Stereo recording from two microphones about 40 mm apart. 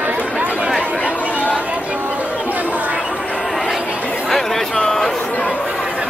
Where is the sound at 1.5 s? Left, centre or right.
Right.